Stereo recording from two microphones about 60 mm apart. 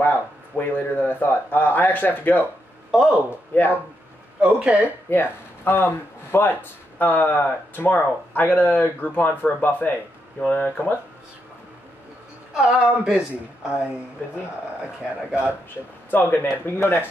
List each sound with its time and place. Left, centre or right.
0.0 s speech: left
2.9 s a man's voice: centre
3.5 s speech: left
4.4 s speech: centre
5.1 s speech: left
12.5 s a woman's voice: centre
16.1 s speech: left